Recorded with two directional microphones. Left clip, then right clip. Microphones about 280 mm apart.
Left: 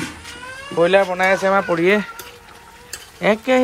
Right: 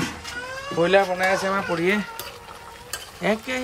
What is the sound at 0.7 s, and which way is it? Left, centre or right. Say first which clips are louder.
Speech: left 4 dB; centre.